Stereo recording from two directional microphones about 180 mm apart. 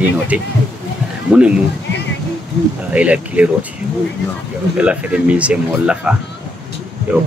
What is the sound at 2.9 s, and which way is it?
Speech, 5° right (ahead or behind).